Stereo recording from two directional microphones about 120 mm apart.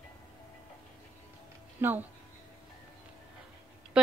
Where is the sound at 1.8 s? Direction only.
15° right (ahead or behind).